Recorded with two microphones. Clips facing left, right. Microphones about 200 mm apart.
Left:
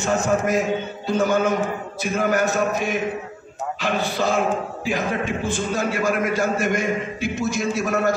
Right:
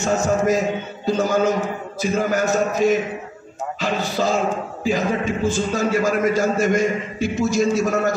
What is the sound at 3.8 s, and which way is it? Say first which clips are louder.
A man's voice: right 1 dB; 55° left (ahead or behind).